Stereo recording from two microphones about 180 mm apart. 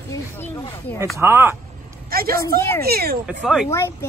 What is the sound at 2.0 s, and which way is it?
Speech, 55° right (ahead or behind).